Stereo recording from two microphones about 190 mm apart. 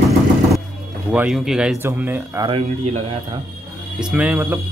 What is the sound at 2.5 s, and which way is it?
Speech, 30° right (ahead or behind).